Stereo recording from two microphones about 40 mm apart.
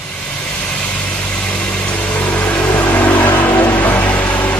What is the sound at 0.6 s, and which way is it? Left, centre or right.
Vehicle, left.